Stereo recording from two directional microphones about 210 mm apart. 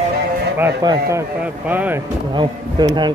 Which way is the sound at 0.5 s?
10° right (ahead or behind).